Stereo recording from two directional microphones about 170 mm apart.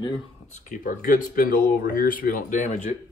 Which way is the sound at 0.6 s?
50° left (ahead or behind).